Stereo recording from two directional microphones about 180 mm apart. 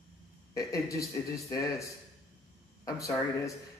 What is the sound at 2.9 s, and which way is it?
Speech, 20° left (ahead or behind).